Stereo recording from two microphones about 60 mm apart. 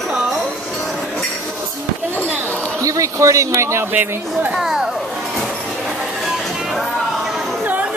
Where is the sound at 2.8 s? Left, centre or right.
Right.